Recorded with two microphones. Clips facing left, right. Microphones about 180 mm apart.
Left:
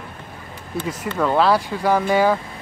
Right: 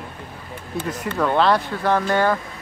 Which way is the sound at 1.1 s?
5° left (ahead or behind).